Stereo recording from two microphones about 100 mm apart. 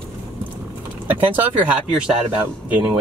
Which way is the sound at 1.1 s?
15° right (ahead or behind).